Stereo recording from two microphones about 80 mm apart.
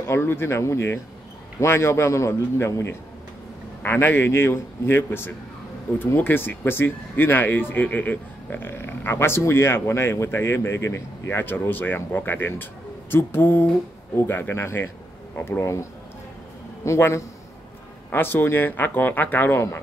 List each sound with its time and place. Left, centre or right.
0.0 s a man's voice: left
15.6 s a man's voice: left
18.1 s speech: left